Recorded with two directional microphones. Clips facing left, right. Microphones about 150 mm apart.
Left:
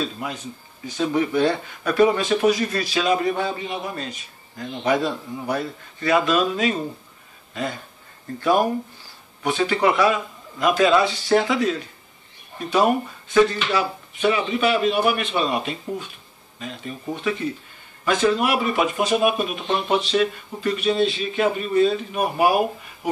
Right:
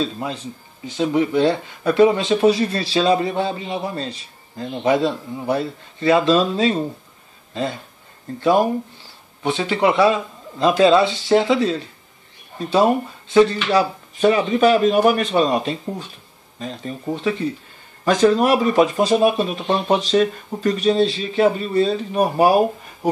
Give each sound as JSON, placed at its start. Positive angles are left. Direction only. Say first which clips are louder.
{"t": 0.0, "sound": "speech", "louder": "right 4 dB", "side_deg": -30}
{"t": 8.4, "sound": "speech", "louder": "right 3 dB", "side_deg": -25}